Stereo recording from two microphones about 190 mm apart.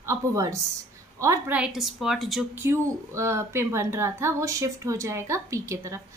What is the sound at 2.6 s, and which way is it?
A woman's voice, 15° right (ahead or behind).